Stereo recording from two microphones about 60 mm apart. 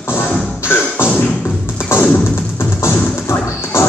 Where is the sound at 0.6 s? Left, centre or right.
Left.